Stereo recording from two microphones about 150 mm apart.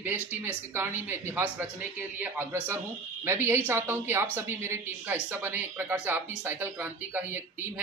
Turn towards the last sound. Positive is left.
turn(degrees=-10)  # may be behind; listen again after turning